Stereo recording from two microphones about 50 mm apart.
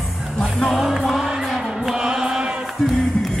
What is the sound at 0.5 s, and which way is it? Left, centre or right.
Music, centre.